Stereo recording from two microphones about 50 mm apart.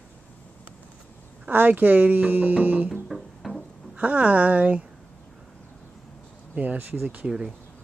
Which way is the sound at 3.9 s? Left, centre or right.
Right.